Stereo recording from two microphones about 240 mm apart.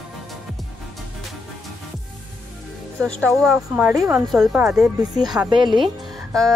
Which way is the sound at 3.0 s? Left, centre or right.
Centre.